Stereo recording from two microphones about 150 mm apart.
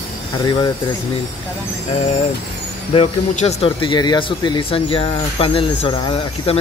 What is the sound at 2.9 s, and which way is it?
Speech, 45° left (ahead or behind).